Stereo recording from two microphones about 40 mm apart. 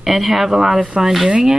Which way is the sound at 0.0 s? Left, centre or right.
Centre.